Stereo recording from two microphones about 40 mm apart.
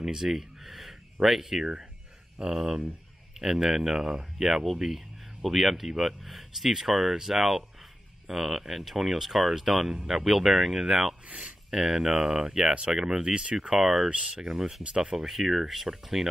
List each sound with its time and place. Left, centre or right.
0.0 s speech: centre
11.2 s speech: right
11.7 s speech: centre
13.7 s speech: centre